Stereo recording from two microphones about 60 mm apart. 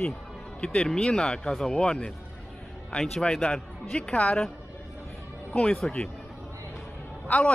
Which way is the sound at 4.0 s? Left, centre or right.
Left.